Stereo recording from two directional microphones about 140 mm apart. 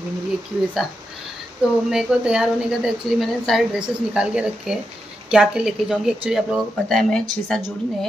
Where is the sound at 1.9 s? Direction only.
5° right (ahead or behind).